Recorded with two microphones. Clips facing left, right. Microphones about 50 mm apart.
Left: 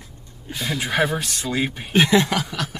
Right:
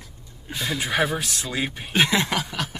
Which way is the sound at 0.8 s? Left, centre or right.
Centre.